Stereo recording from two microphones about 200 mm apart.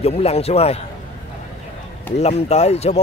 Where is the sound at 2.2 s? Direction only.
35° left (ahead or behind).